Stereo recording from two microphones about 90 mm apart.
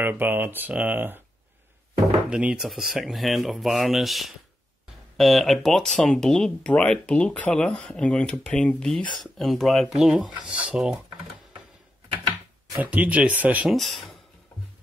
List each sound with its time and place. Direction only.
0.0 s speech: 25° right (ahead or behind)
2.2 s speech: 10° right (ahead or behind)
12.7 s speech: 15° right (ahead or behind)
13.7 s speech: centre (ahead or behind)